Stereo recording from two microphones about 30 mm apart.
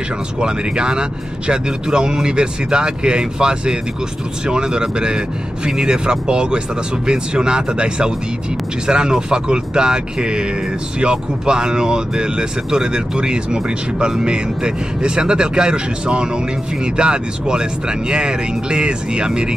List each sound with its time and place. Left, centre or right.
0.4 s speech: right